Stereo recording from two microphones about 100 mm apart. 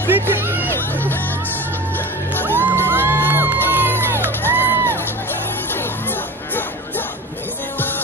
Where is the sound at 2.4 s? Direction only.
20° right (ahead or behind).